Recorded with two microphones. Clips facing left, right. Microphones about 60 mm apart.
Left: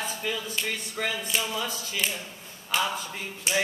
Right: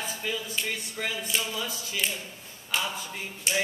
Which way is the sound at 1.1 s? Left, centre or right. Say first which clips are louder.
Left 1 dB; centre.